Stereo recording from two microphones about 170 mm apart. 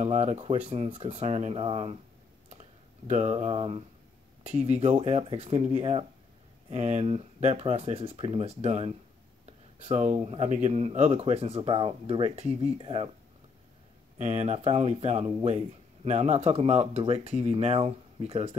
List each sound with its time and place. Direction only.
0.0 s speech: 40° right (ahead or behind)
3.1 s speech: 40° right (ahead or behind)
14.1 s speech: 40° right (ahead or behind)